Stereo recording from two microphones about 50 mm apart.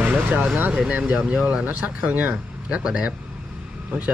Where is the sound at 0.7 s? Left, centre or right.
Right.